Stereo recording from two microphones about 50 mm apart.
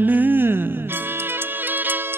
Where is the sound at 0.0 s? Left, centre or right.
Right.